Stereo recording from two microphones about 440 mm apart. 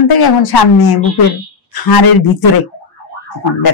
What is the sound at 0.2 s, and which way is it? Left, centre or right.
Speech, left.